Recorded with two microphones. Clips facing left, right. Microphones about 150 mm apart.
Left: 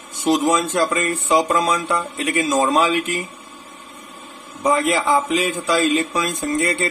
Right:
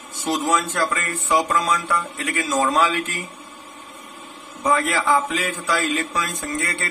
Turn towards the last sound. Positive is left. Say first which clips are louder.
# left 7 dB
turn(degrees=20)  # may be behind; listen again after turning